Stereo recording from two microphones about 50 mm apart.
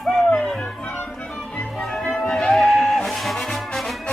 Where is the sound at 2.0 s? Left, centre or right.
Centre.